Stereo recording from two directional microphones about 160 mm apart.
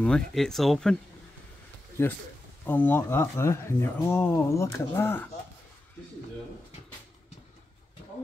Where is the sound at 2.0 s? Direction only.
15° left (ahead or behind).